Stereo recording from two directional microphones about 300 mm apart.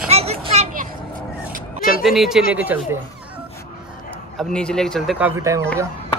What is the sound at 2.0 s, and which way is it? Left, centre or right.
Speech, centre.